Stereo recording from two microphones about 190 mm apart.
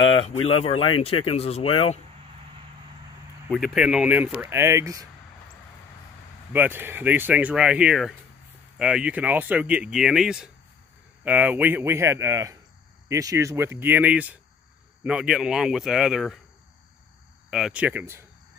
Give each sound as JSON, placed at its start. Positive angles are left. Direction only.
{"t": 0.0, "sound": "a sound", "side_deg": 30}
{"t": 0.5, "sound": "speech", "side_deg": 30}
{"t": 3.4, "sound": "speech", "side_deg": 0}
{"t": 6.5, "sound": "speech", "side_deg": -10}
{"t": 17.5, "sound": "speech", "side_deg": -5}